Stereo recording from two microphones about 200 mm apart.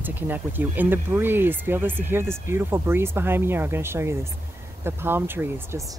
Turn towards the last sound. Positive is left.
turn(degrees=-10)  # may be behind; listen again after turning